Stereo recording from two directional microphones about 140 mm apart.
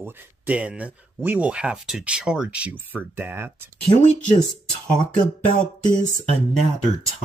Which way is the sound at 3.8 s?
60° left (ahead or behind).